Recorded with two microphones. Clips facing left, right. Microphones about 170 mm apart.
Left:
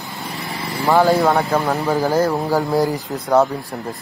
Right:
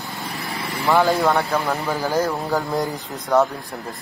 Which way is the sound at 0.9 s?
20° left (ahead or behind).